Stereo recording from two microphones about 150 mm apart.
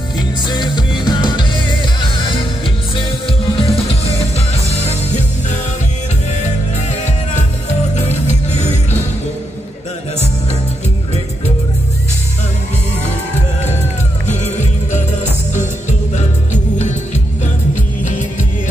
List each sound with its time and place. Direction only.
0.2 s music: 30° left (ahead or behind)
3.5 s music: 40° left (ahead or behind)
7.9 s music: 45° left (ahead or behind)
14.2 s music: 50° left (ahead or behind)